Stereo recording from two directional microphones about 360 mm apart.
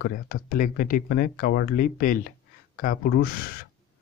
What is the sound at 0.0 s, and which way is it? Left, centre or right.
Speech, left.